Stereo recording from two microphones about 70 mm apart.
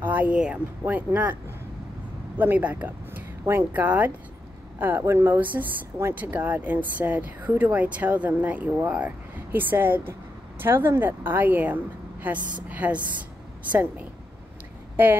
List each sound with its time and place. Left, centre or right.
0.0 s a sound: right
0.8 s speech: right
5.0 s speech: right
5.4 s speech: right